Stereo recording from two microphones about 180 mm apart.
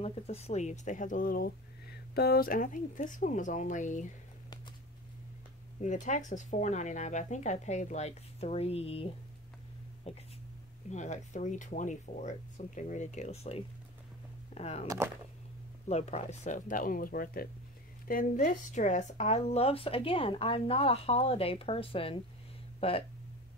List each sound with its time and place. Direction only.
0.0 s speech: 35° left (ahead or behind)
5.8 s speech: 45° left (ahead or behind)
10.9 s speech: 40° left (ahead or behind)
15.9 s speech: 35° left (ahead or behind)